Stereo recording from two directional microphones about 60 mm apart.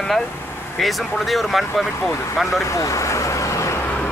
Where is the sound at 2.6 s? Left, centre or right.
Left.